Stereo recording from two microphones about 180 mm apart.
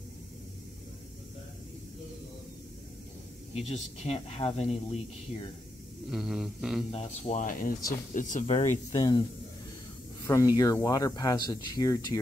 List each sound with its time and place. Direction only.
3.5 s speech: 35° left (ahead or behind)
6.0 s a sound: centre (ahead or behind)
6.9 s speech: 35° left (ahead or behind)
8.9 s speech: 20° left (ahead or behind)
10.2 s speech: 20° left (ahead or behind)